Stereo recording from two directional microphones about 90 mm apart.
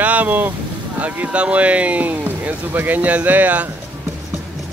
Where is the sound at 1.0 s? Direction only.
15° right (ahead or behind).